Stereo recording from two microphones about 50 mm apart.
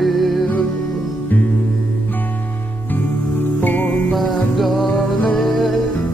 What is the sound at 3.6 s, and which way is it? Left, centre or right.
Music, left.